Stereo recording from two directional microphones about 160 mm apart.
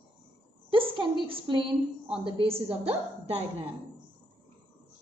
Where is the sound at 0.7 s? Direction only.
35° right (ahead or behind).